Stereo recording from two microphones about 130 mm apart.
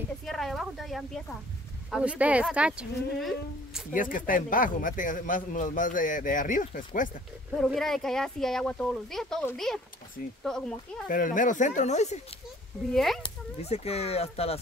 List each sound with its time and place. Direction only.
0.2 s a sound: centre (ahead or behind)
1.9 s speech: 5° right (ahead or behind)
3.9 s speech: 90° left
7.5 s speech: 5° left (ahead or behind)
11.1 s speech: 85° left; by 12.2 s 60° left (ahead or behind)
12.9 s speech: centre (ahead or behind)
13.2 s speech: 50° left (ahead or behind)